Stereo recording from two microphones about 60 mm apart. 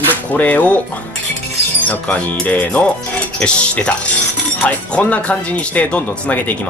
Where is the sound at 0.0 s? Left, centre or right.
Left.